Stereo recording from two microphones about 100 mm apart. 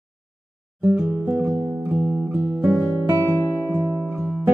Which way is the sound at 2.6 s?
5° right (ahead or behind).